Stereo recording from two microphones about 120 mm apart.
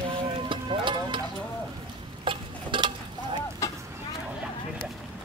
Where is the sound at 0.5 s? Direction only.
45° right (ahead or behind).